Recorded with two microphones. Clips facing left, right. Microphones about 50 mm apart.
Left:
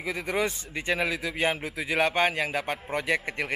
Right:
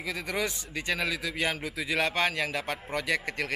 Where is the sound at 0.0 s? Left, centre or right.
Centre.